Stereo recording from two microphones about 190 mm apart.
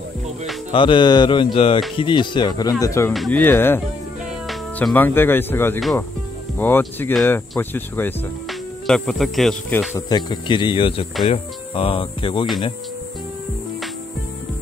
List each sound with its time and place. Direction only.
0.7 s speech: 25° left (ahead or behind)
3.1 s speech: 5° left (ahead or behind); by 12.4 s 25° left (ahead or behind)